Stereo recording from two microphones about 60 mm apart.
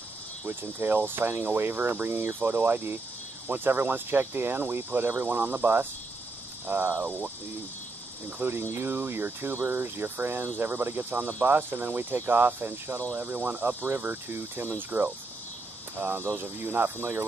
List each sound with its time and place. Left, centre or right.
0.5 s speech: right
8.4 s speech: right